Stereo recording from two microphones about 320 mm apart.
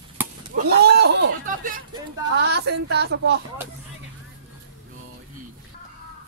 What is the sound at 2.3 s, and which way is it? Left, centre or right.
Speech, right.